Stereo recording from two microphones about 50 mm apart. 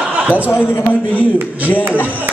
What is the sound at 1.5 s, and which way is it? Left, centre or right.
Speech, right.